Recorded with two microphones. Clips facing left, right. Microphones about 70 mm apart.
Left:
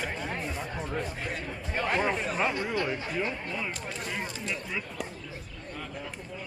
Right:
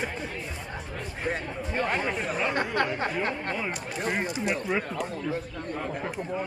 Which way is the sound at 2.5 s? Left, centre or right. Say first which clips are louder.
Right 3 dB; right.